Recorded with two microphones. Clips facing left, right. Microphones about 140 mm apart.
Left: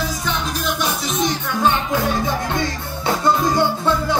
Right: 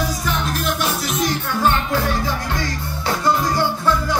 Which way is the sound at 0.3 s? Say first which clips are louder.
Right 1 dB; 5° right (ahead or behind).